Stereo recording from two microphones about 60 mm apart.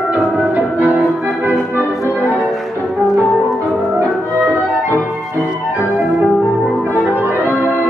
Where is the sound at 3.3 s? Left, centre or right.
Centre.